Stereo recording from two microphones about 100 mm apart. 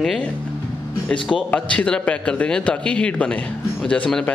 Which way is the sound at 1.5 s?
15° left (ahead or behind).